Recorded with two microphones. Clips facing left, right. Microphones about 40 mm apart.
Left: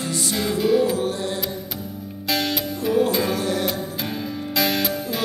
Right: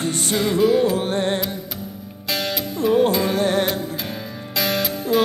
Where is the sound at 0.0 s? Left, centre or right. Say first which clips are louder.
Right 3 dB; right.